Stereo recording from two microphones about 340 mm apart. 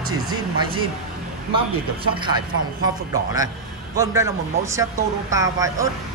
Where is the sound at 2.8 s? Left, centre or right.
Centre.